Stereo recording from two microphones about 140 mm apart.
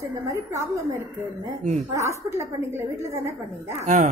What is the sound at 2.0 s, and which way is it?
A woman's voice, 20° right (ahead or behind).